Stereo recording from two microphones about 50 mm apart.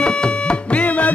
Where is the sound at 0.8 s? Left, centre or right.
Left.